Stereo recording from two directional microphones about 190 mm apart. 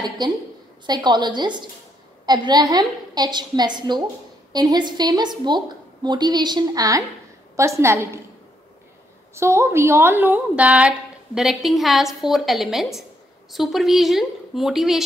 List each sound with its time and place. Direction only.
0.2 s a woman's voice: 20° right (ahead or behind)
9.3 s a woman's voice: 15° right (ahead or behind)